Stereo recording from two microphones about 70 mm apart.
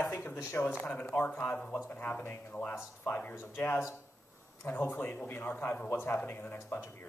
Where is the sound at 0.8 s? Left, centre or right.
Left.